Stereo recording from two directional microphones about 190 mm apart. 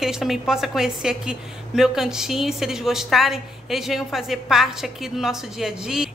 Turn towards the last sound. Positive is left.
turn(degrees=-5)  # may be behind; listen again after turning